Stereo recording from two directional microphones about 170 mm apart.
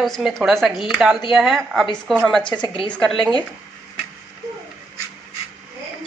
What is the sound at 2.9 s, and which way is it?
Speech, 5° left (ahead or behind).